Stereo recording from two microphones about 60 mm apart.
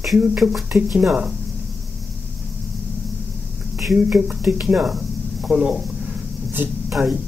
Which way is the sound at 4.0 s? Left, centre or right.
Right.